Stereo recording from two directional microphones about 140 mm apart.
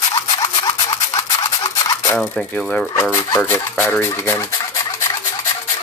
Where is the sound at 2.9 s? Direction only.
25° left (ahead or behind).